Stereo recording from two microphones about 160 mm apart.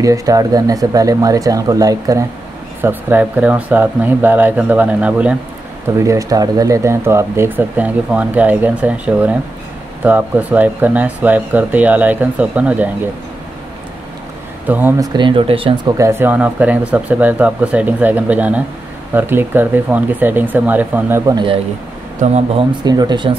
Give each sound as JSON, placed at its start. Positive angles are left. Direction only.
{"t": 0.0, "sound": "speech", "side_deg": -20}
{"t": 5.9, "sound": "speech", "side_deg": -20}
{"t": 14.7, "sound": "speech", "side_deg": -15}
{"t": 15.1, "sound": "speech", "side_deg": -30}
{"t": 16.0, "sound": "speech", "side_deg": -15}
{"t": 21.3, "sound": "speech", "side_deg": -25}
{"t": 22.2, "sound": "speech", "side_deg": -45}
{"t": 22.8, "sound": "speech", "side_deg": -25}